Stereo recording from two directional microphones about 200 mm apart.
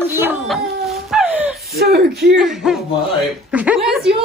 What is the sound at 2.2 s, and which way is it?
Speech, centre (ahead or behind).